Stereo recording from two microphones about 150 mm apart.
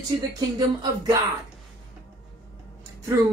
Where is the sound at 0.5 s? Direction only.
25° right (ahead or behind).